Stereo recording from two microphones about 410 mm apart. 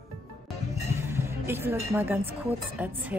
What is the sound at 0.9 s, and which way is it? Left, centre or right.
Music, centre.